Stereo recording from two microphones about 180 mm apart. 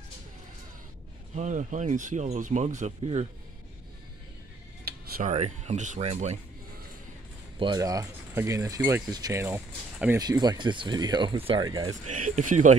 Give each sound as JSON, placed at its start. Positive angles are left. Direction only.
{"t": 1.3, "sound": "speech", "side_deg": -40}
{"t": 4.8, "sound": "a sound", "side_deg": -55}
{"t": 5.3, "sound": "speech", "side_deg": -40}
{"t": 7.5, "sound": "speech", "side_deg": -25}
{"t": 10.1, "sound": "speech", "side_deg": -20}
{"t": 12.3, "sound": "speech", "side_deg": -40}